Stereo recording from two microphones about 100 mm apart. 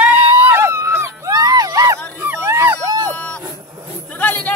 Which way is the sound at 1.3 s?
40° right (ahead or behind).